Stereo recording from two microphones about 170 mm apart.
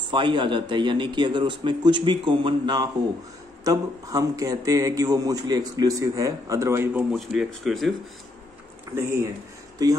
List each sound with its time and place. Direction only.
0.1 s a man's voice: 25° right (ahead or behind); by 7.9 s centre (ahead or behind)
8.9 s speech: 15° right (ahead or behind)